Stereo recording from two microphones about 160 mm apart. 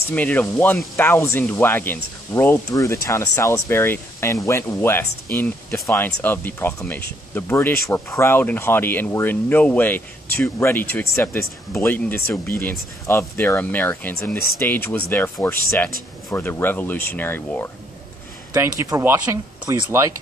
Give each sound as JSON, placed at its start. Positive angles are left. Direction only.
{"t": 0.1, "sound": "speech", "side_deg": 10}
{"t": 18.5, "sound": "speech", "side_deg": -20}